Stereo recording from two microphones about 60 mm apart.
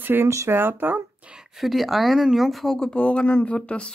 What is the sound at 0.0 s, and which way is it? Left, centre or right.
Speech, right.